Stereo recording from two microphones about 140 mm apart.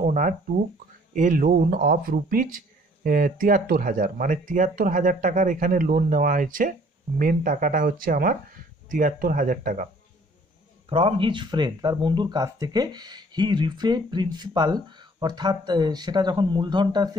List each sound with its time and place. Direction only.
0.0 s speech: 65° right (ahead or behind)
10.9 s speech: 40° right (ahead or behind)